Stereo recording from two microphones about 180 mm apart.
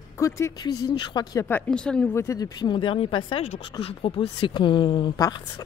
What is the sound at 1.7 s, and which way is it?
Speech, 5° left (ahead or behind).